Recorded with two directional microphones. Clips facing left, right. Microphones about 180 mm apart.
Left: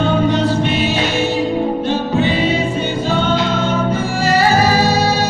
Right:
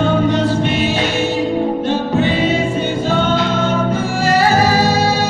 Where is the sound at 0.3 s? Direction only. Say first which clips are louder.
Even; 50° right (ahead or behind).